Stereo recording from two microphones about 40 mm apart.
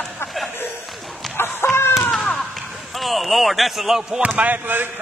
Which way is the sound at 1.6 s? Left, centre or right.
Left.